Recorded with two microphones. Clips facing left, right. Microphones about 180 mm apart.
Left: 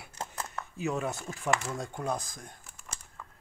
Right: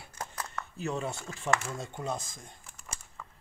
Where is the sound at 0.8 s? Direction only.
Centre (ahead or behind).